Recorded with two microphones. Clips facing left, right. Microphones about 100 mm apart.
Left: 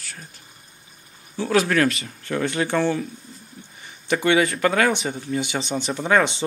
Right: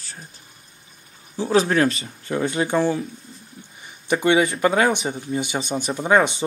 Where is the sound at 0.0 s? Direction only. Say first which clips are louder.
Even; 30° right (ahead or behind).